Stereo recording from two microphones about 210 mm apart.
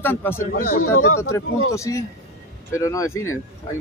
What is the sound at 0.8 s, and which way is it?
Speech, 90° left.